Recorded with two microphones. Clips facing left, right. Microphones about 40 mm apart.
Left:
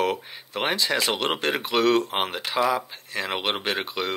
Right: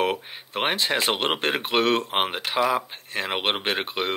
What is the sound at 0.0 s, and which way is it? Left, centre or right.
Speech, right.